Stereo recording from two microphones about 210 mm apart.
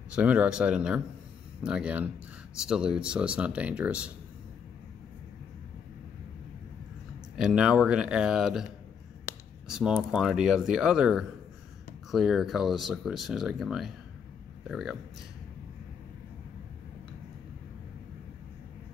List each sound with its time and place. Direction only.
0.1 s speech: 5° right (ahead or behind)
7.3 s speech: 5° right (ahead or behind)
9.7 s speech: 5° right (ahead or behind)